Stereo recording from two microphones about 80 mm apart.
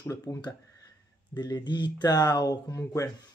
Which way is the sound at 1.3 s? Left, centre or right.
Left.